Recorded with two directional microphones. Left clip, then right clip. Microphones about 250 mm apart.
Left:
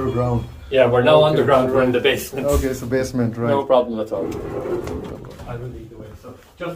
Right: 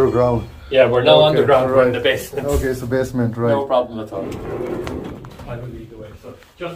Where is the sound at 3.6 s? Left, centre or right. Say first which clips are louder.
Left 2 dB; left.